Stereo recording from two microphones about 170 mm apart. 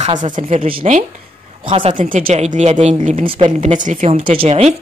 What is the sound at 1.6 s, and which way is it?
Speech, 30° right (ahead or behind).